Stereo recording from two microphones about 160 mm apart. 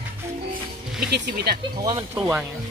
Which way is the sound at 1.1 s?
80° right.